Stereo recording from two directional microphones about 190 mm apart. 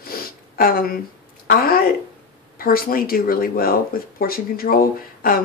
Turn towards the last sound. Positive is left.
turn(degrees=50)  # may be behind; listen again after turning